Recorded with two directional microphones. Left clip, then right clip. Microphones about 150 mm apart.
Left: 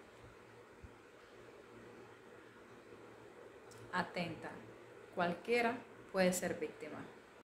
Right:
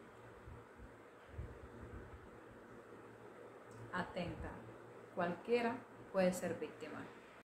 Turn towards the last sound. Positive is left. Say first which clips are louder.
# left 2 dB
turn(degrees=15)  # may be behind; listen again after turning